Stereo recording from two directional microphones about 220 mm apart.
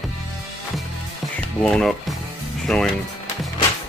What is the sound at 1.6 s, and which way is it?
Speech, 5° left (ahead or behind).